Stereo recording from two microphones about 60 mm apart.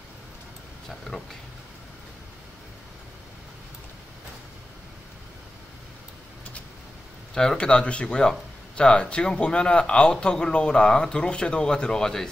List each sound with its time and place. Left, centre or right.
0.8 s speech: centre
7.5 s speech: centre